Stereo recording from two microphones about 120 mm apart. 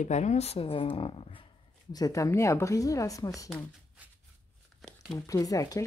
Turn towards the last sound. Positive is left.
turn(degrees=30)  # may be behind; listen again after turning